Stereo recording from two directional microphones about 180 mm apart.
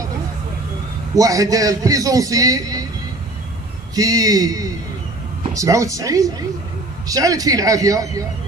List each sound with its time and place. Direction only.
1.1 s a man's voice: 20° right (ahead or behind)
3.9 s a man's voice: 20° right (ahead or behind)